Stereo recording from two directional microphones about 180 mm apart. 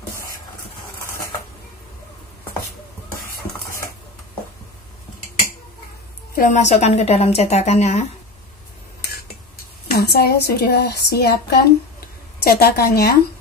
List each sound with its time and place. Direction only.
6.3 s a woman's voice: 45° left (ahead or behind)
9.8 s a woman's voice: 60° left (ahead or behind)